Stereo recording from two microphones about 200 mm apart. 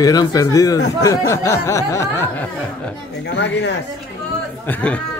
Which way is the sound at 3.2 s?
60° left (ahead or behind).